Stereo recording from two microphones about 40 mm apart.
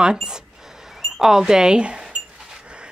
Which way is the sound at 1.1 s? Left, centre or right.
Centre.